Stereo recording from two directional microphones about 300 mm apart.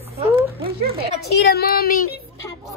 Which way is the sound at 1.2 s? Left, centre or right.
Left.